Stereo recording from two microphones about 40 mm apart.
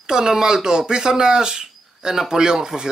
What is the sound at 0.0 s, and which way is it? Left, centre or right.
Speech, centre.